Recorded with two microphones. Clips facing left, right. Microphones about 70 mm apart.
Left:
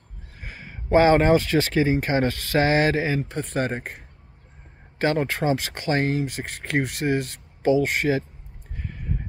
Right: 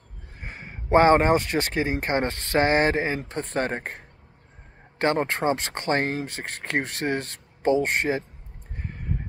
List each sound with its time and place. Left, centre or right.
0.4 s a sound: right
1.7 s speech: right
5.0 s speech: right